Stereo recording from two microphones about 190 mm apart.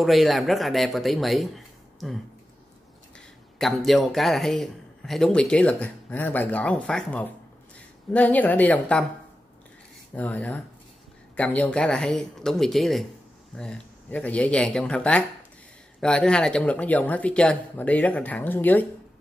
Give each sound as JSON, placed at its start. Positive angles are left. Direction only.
{"t": 0.0, "sound": "a man's voice", "side_deg": 0}
{"t": 3.5, "sound": "a man's voice", "side_deg": 0}
{"t": 10.1, "sound": "a man's voice", "side_deg": 10}